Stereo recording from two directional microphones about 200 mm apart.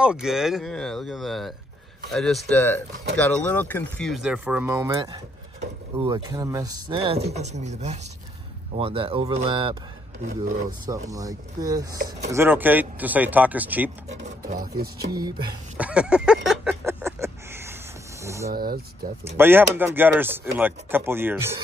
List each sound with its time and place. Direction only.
0.0 s speech: 5° right (ahead or behind); by 9.8 s 25° right (ahead or behind)
10.9 s speech: 15° right (ahead or behind)
14.0 s speech: 35° right (ahead or behind)
15.1 s speech: 20° right (ahead or behind)
15.8 s speech: 5° right (ahead or behind)
16.4 s a sound: 10° right (ahead or behind)
18.5 s speech: 50° right (ahead or behind)
19.3 s speech: 10° right (ahead or behind)